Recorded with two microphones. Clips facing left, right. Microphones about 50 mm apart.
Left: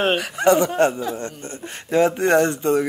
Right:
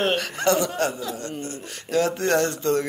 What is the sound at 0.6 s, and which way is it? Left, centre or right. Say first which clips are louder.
A man's voice: left 6 dB; left.